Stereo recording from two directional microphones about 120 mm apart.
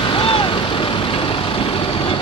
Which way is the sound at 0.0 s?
50° left (ahead or behind).